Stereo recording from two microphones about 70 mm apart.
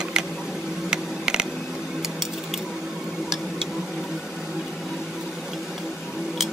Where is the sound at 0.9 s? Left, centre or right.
Centre.